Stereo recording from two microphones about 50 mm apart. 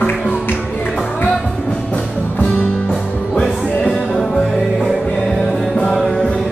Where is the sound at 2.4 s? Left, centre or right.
Left.